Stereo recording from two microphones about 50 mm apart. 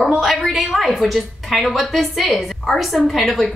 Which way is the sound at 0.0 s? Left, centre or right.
Centre.